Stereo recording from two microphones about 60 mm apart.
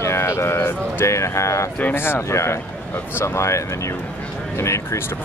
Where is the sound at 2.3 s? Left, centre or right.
Left.